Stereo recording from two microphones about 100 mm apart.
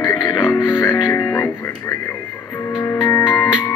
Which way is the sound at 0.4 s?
30° left (ahead or behind).